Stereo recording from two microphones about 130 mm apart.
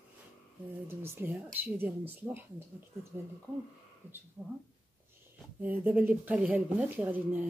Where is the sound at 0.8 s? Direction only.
15° right (ahead or behind).